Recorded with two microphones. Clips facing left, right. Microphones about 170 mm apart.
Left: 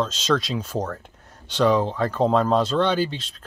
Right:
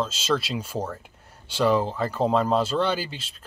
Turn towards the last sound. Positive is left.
turn(degrees=-5)  # may be behind; listen again after turning